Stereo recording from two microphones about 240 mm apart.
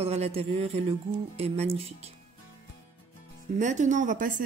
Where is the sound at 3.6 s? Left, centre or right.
Right.